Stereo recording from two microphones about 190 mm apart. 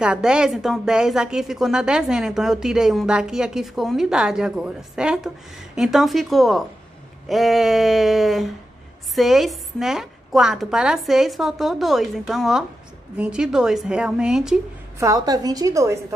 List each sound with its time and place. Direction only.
0.0 s speech: 5° right (ahead or behind)
15.0 s a woman's voice: 20° right (ahead or behind)